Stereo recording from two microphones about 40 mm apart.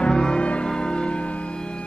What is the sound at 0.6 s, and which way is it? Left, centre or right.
Music, centre.